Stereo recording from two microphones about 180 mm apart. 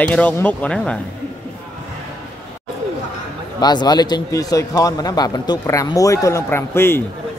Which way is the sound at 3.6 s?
25° left (ahead or behind).